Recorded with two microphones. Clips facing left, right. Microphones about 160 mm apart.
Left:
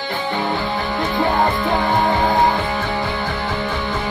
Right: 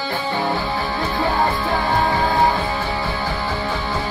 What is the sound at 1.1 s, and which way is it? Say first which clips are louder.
Music: left 2 dB; 20° left (ahead or behind).